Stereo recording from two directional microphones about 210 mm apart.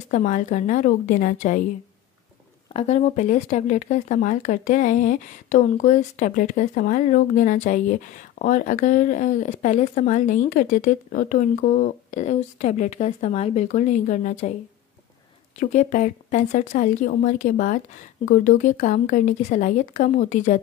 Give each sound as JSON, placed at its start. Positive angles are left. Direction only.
{"t": 0.1, "sound": "speech", "side_deg": 35}
{"t": 2.7, "sound": "speech", "side_deg": 35}
{"t": 15.6, "sound": "speech", "side_deg": 35}